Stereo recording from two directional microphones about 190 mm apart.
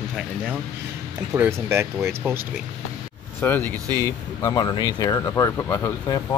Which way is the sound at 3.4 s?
10° left (ahead or behind).